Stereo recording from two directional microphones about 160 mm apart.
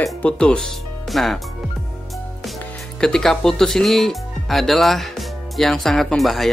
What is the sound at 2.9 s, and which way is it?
Speech, 5° left (ahead or behind).